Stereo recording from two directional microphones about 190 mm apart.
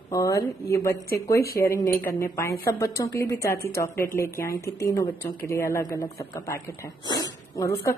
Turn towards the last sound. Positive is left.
turn(degrees=15)  # may be behind; listen again after turning